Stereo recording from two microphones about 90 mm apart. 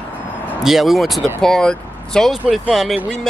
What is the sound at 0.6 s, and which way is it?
Speech, 5° right (ahead or behind).